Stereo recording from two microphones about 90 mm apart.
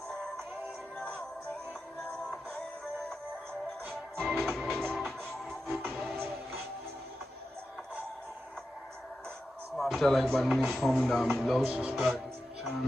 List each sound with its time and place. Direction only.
4.2 s music: centre (ahead or behind)
5.9 s music: 15° right (ahead or behind)
9.8 s speech: centre (ahead or behind)